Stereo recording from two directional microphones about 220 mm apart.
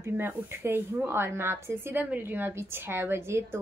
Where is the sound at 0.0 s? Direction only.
10° right (ahead or behind).